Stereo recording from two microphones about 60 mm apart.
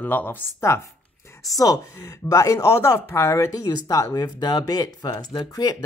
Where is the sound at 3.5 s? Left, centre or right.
Left.